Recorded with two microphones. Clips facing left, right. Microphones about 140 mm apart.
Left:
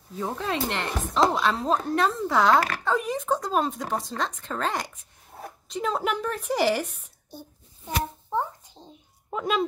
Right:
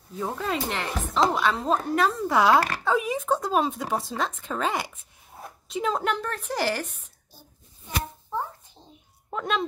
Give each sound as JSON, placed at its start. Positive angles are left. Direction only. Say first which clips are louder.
{"t": 0.1, "sound": "a woman's voice", "louder": "even", "side_deg": 0}
{"t": 8.8, "sound": "a sound", "louder": "left 4 dB", "side_deg": 20}
{"t": 9.3, "sound": "speech", "louder": "left 2 dB", "side_deg": 5}